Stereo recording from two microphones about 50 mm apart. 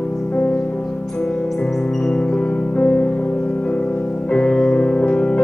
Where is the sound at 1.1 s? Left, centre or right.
Centre.